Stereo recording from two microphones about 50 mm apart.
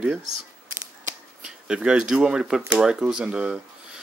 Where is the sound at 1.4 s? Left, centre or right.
Centre.